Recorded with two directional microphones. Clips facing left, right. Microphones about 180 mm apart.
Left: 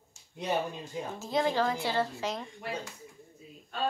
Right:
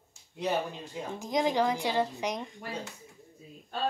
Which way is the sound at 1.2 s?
15° right (ahead or behind).